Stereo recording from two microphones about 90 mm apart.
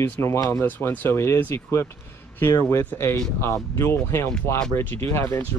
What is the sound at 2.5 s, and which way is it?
Speech, 35° left (ahead or behind).